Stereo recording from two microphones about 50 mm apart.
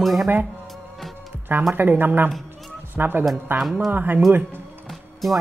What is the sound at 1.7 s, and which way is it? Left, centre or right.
Speech, right.